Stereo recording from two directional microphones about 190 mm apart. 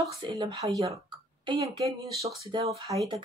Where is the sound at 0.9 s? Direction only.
25° right (ahead or behind).